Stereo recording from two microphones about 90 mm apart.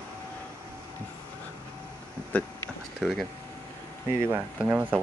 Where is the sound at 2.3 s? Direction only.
20° left (ahead or behind).